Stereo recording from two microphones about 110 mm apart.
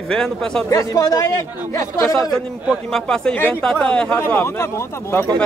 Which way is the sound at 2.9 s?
5° left (ahead or behind).